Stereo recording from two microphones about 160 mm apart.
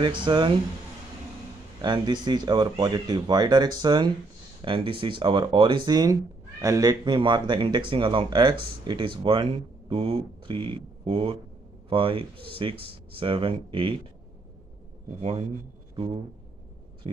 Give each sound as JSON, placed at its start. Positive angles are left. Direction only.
{"t": 0.0, "sound": "speech", "side_deg": -30}
{"t": 1.8, "sound": "speech", "side_deg": -30}
{"t": 15.1, "sound": "speech", "side_deg": -40}
{"t": 17.0, "sound": "speech", "side_deg": -30}